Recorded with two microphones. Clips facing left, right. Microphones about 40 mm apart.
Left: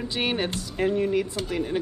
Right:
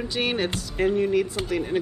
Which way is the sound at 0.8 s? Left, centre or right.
Centre.